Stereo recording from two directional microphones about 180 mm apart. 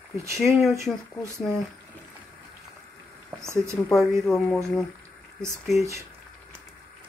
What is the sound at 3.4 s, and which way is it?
Speech, 15° right (ahead or behind).